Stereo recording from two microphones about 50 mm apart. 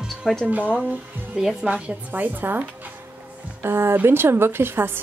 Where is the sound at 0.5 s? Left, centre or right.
Right.